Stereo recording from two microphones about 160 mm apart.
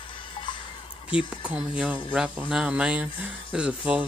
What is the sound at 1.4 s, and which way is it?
Speech, 10° right (ahead or behind).